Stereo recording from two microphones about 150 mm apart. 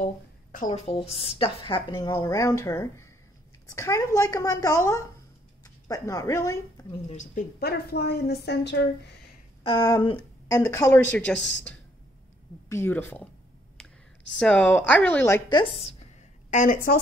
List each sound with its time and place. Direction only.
0.0 s a sound: 60° left (ahead or behind)
0.7 s a woman's voice: 45° left (ahead or behind)
2.0 s a woman's voice: 20° left (ahead or behind)
7.1 s speech: 55° left (ahead or behind)
7.6 s a woman's voice: 90° left
9.7 s a woman's voice: 30° left (ahead or behind); by 13.3 s 10° left (ahead or behind)
14.4 s a woman's voice: 10° left (ahead or behind)
15.8 s a sound: 50° left (ahead or behind); by 17.0 s 70° left (ahead or behind)